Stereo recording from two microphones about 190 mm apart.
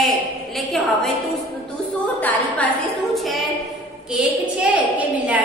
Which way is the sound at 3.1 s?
Centre (ahead or behind).